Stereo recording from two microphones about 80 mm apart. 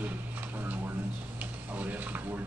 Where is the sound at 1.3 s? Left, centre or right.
Right.